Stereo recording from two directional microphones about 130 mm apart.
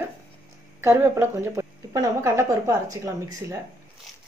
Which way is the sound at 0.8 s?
20° right (ahead or behind).